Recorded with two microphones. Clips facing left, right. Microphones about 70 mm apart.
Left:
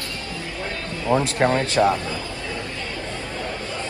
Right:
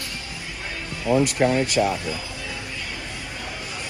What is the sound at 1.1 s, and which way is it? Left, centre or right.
Speech, left.